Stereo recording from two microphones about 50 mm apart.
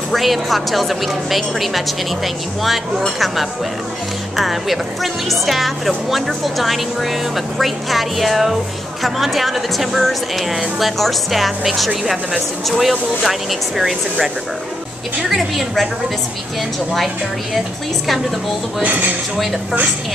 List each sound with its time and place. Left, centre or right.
0.1 s a woman's voice: centre
4.4 s a woman's voice: centre
15.2 s a woman's voice: centre
18.8 s speech: right